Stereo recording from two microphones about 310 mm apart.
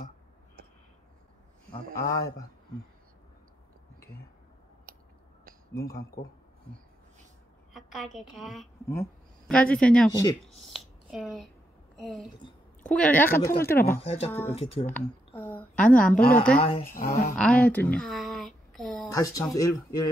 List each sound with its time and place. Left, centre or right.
2.0 s speech: centre
4.9 s a sound: right
5.7 s speech: centre
7.9 s a woman's voice: centre
14.0 s speech: centre
14.9 s speech: centre
16.2 s speech: left
16.5 s speech: centre
17.4 s speech: centre